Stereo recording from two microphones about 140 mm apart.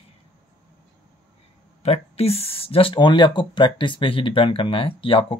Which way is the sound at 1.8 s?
45° left (ahead or behind).